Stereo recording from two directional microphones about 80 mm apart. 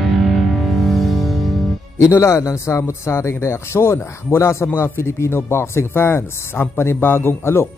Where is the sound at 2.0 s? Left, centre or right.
Left.